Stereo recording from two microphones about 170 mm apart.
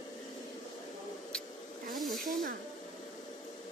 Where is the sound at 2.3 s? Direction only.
55° right (ahead or behind).